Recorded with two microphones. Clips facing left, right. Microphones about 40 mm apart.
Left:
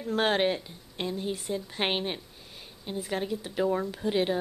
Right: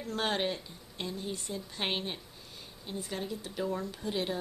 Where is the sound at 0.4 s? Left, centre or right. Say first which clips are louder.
Left 6 dB; left.